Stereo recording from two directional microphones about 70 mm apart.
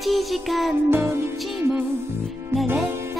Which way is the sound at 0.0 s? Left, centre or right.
Centre.